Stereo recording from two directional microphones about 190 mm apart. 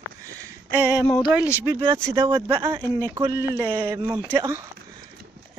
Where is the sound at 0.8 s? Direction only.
10° right (ahead or behind).